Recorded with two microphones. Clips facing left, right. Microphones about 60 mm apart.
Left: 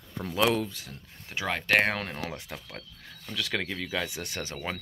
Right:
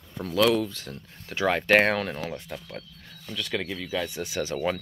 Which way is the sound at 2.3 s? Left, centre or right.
Centre.